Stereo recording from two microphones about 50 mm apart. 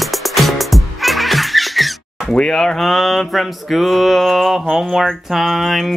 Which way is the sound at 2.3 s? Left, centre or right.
Centre.